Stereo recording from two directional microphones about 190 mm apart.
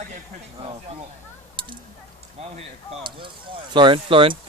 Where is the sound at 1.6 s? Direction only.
25° right (ahead or behind).